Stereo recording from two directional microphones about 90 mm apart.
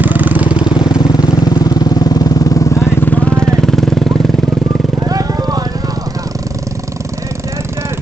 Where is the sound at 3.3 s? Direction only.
5° left (ahead or behind).